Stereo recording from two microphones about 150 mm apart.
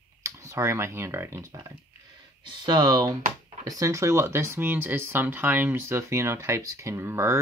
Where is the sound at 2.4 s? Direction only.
30° right (ahead or behind).